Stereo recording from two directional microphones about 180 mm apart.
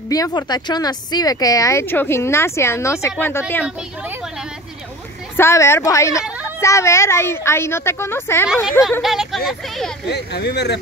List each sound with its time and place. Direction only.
0.1 s speech: 20° left (ahead or behind)
5.3 s speech: 15° left (ahead or behind)
9.0 s speech: centre (ahead or behind)
10.0 s speech: 70° left (ahead or behind)